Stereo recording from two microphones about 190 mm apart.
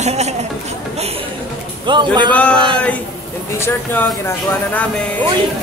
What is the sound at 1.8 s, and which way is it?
Speech, 25° right (ahead or behind).